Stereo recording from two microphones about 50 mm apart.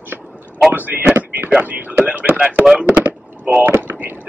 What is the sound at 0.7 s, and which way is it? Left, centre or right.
Speech, right.